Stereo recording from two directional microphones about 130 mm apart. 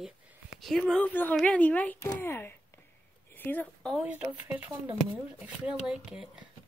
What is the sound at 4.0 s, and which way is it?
Speech, 10° right (ahead or behind).